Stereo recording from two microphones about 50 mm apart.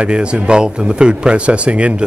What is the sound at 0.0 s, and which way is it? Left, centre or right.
A man's voice, right.